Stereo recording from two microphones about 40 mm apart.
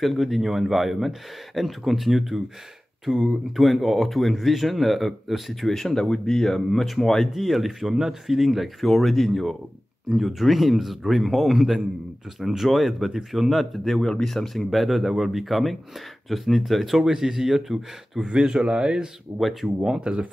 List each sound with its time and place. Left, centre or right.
0.0 s speech: centre
18.3 s speech: centre
19.3 s speech: centre
20.0 s speech: right